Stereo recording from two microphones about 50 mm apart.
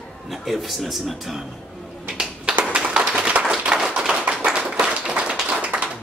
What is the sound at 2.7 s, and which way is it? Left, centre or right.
Tap, centre.